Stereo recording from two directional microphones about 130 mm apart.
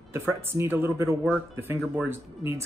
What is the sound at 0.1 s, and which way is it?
Speech, 15° right (ahead or behind).